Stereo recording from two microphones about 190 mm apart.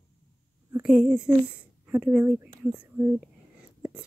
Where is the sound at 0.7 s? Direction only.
5° right (ahead or behind).